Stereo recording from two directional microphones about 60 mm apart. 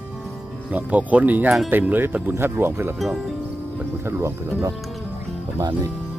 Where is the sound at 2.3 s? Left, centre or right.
Right.